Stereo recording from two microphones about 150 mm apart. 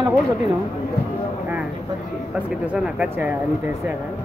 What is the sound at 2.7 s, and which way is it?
Speech, 10° right (ahead or behind).